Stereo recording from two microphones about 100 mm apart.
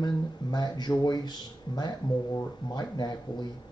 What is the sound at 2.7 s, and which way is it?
Speech, 45° left (ahead or behind).